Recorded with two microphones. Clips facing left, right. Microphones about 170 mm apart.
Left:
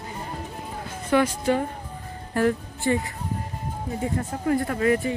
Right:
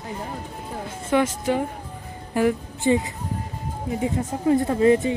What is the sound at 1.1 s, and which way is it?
Speech, 20° right (ahead or behind).